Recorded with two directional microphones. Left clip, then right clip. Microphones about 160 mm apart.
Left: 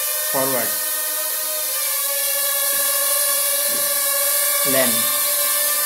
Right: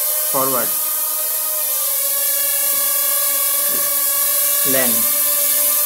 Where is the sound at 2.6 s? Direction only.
Centre (ahead or behind).